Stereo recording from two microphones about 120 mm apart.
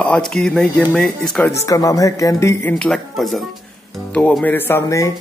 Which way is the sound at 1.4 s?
25° left (ahead or behind).